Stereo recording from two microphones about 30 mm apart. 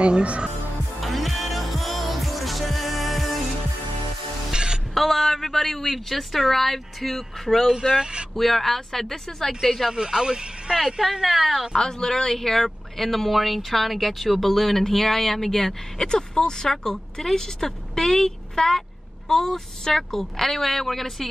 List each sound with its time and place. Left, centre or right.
0.0 s speech: right
1.0 s music: centre
4.5 s music: right
4.9 s speech: centre
7.7 s speech: right
8.4 s speech: centre
9.6 s speech: centre
9.8 s speech: right; by 11.6 s centre
11.7 s speech: left
16.1 s a woman's voice: left
20.2 s speech: centre